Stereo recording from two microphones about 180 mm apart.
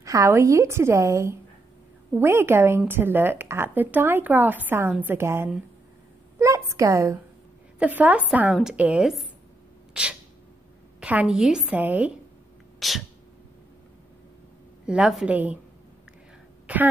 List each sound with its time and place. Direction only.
0.0 s a woman's voice: 15° right (ahead or behind); by 9.3 s centre (ahead or behind)
11.0 s a woman's voice: 5° right (ahead or behind)
12.7 s sneeze: centre (ahead or behind)
14.9 s speech: 5° right (ahead or behind)